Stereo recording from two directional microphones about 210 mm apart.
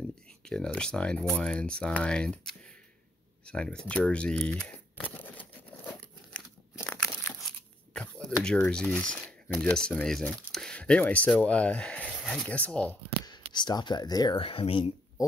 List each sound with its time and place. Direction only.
0.4 s speech: 5° left (ahead or behind)
6.8 s tearing: 10° left (ahead or behind)
10.4 s speech: centre (ahead or behind)
13.2 s speech: 20° left (ahead or behind)